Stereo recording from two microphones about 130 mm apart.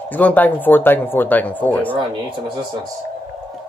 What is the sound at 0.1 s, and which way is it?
Speech, 10° left (ahead or behind).